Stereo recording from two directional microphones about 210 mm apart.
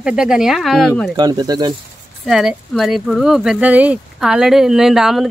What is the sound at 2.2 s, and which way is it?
Speech, centre (ahead or behind).